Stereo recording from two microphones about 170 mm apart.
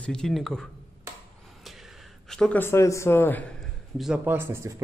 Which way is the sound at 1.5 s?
Centre (ahead or behind).